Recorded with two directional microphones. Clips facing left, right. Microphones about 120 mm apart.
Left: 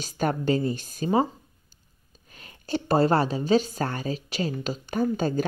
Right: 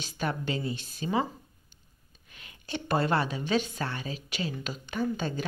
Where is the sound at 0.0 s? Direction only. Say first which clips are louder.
Left 6 dB; 40° left (ahead or behind).